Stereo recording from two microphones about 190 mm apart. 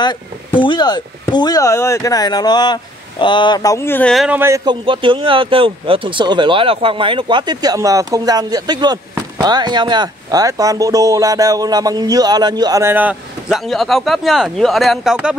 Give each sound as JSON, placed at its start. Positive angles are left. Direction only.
{"t": 0.0, "sound": "speech", "side_deg": 25}
{"t": 4.4, "sound": "speech", "side_deg": -15}
{"t": 4.8, "sound": "speech", "side_deg": -25}